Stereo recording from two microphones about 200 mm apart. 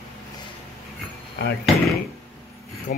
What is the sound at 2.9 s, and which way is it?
Speech, 40° left (ahead or behind).